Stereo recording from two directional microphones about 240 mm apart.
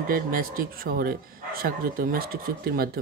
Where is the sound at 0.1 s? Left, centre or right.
Right.